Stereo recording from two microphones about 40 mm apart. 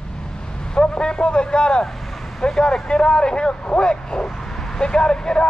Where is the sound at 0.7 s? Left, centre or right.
Left.